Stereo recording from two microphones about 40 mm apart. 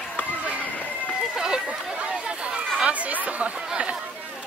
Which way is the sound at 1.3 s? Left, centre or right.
Centre.